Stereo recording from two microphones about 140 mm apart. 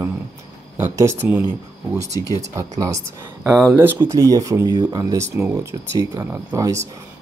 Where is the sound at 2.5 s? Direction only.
25° right (ahead or behind).